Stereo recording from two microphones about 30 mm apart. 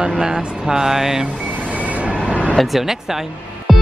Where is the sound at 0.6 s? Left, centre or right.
Centre.